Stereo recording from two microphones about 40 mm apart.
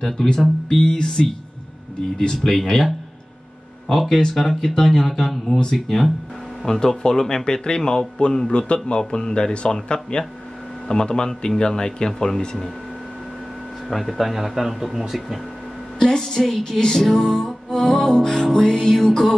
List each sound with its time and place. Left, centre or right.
0.0 s music: centre
2.1 s music: centre
3.9 s music: centre
6.6 s speech: centre
12.1 s music: centre
13.8 s speech: centre
16.0 s music: centre
17.3 s music: centre